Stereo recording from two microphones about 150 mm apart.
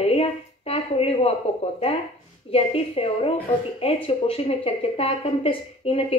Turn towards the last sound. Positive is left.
turn(degrees=40)  # may be behind; listen again after turning